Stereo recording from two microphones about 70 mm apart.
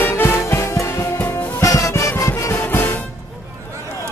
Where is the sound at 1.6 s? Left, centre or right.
Left.